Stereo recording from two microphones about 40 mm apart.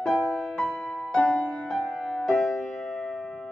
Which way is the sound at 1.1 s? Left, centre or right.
Left.